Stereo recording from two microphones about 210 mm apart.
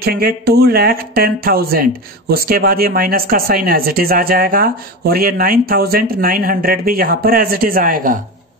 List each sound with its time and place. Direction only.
0.0 s speech: 45° right (ahead or behind)